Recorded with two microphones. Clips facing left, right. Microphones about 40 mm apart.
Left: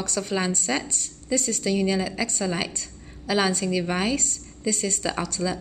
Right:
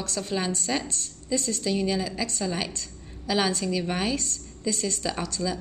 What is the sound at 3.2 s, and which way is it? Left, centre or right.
Speech, left.